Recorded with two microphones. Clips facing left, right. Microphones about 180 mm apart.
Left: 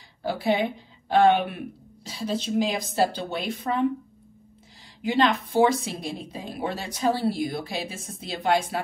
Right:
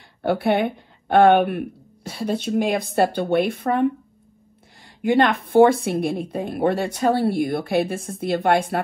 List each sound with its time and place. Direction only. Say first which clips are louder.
0.2 s speech: right 5 dB; 60° right (ahead or behind)
5.0 s speech: right 4 dB; 60° right (ahead or behind)